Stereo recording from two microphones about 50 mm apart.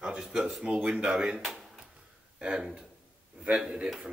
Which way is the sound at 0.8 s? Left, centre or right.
Right.